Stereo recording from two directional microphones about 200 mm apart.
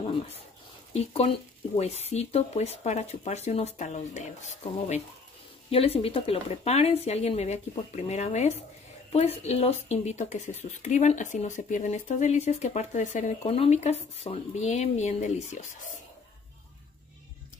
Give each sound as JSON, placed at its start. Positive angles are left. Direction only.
{"t": 0.9, "sound": "speech", "side_deg": 30}